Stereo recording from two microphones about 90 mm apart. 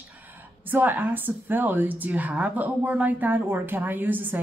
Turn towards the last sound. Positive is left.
turn(degrees=-20)  # may be behind; listen again after turning